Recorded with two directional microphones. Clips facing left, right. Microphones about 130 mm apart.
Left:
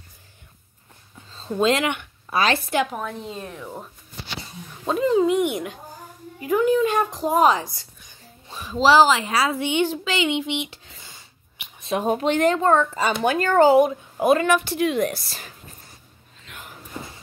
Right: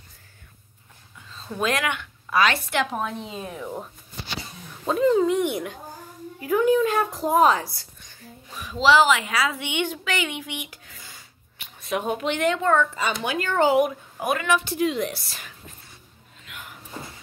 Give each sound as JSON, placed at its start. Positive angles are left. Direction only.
{"t": 1.5, "sound": "a woman's voice", "side_deg": 25}
{"t": 3.0, "sound": "speech", "side_deg": -10}
{"t": 4.8, "sound": "a woman's voice", "side_deg": 0}
{"t": 14.5, "sound": "speech", "side_deg": 65}
{"t": 15.2, "sound": "speech", "side_deg": 35}